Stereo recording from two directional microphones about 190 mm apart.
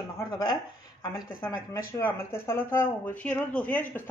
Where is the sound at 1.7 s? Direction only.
15° left (ahead or behind).